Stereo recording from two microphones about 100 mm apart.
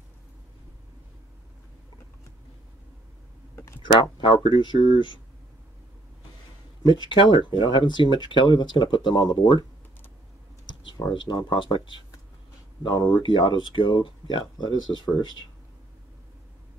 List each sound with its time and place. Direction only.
3.5 s a sound: 30° left (ahead or behind)
3.8 s speech: 55° left (ahead or behind)
7.0 s speech: 55° left (ahead or behind)
11.1 s speech: 50° left (ahead or behind)
15.0 s speech: 45° right (ahead or behind)